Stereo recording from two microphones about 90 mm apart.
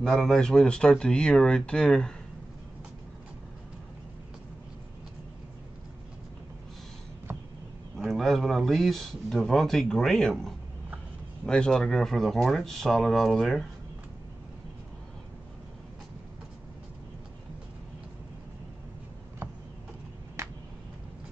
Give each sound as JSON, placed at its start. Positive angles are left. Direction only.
{"t": 0.0, "sound": "speech", "side_deg": 5}
{"t": 8.0, "sound": "a man's voice", "side_deg": 0}